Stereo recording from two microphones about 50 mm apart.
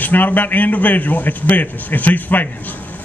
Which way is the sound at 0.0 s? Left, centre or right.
Left.